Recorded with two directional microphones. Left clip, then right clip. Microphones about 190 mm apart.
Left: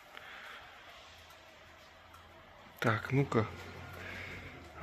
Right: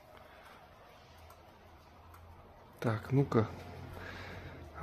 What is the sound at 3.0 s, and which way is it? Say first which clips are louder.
Speech: right 1 dB; 20° right (ahead or behind).